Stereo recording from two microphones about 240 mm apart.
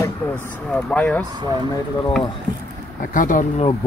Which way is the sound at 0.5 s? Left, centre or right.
Centre.